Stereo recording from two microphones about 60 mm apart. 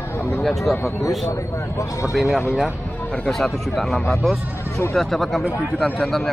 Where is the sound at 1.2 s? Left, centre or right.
Left.